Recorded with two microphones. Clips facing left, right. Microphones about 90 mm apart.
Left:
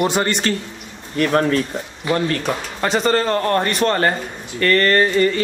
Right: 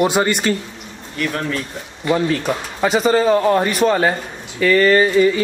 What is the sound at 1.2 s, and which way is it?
Speech, 45° left (ahead or behind).